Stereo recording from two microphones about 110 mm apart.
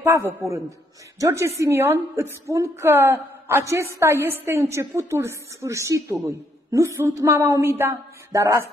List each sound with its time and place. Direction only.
0.0 s a man's voice: 20° right (ahead or behind)